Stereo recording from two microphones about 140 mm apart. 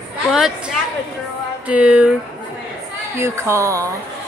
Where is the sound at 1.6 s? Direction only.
10° right (ahead or behind).